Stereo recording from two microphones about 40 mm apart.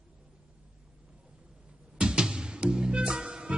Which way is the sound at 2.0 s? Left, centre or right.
Centre.